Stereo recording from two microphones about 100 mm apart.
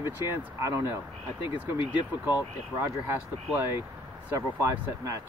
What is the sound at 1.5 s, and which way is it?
Speech, 50° left (ahead or behind).